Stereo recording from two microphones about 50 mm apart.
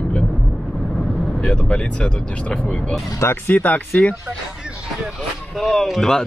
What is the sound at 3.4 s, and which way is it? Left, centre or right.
Speech, left.